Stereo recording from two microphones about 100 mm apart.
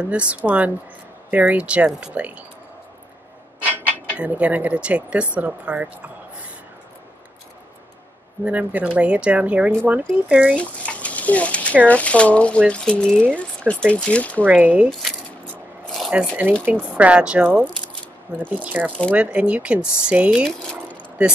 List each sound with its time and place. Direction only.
0.0 s speech: 10° right (ahead or behind)
3.6 s speech: 15° right (ahead or behind)
8.5 s speech: 15° right (ahead or behind)
10.5 s a sound: 10° left (ahead or behind)
11.8 s speech: 15° left (ahead or behind)
14.4 s speech: 15° right (ahead or behind)
14.9 s a sound: centre (ahead or behind)
16.1 s speech: 10° right (ahead or behind)
18.9 s speech: 10° left (ahead or behind)
19.1 s speech: 15° right (ahead or behind)